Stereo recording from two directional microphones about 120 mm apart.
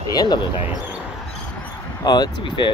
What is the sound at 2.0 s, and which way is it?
Speech, 35° left (ahead or behind).